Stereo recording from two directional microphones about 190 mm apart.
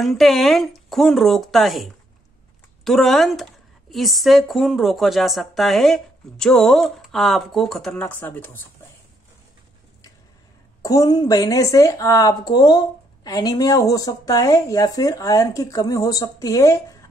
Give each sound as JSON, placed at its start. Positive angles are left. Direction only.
{"t": 0.0, "sound": "a woman's voice", "side_deg": 0}
{"t": 10.8, "sound": "a woman's voice", "side_deg": 20}